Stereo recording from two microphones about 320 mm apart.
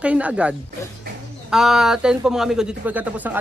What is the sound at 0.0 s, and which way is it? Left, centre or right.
Speech, centre.